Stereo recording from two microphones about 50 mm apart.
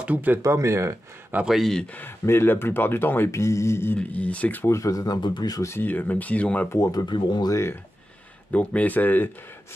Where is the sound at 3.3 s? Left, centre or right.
Left.